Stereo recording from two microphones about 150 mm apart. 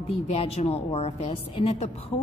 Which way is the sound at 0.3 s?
40° left (ahead or behind).